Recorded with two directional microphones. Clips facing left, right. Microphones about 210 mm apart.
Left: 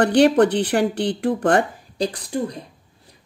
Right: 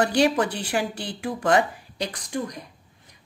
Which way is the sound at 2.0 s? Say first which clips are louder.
Left 6 dB; 30° left (ahead or behind).